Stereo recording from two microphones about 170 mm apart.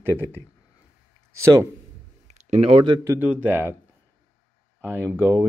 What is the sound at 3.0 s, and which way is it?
Speech, 10° right (ahead or behind).